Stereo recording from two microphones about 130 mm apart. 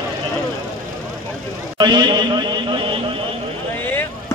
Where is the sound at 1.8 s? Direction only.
35° right (ahead or behind).